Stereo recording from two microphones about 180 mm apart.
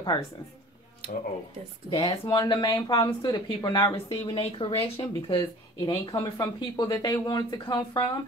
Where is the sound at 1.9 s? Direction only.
25° left (ahead or behind).